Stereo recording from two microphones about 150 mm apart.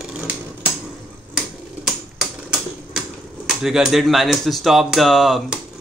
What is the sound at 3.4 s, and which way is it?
Speech, centre (ahead or behind).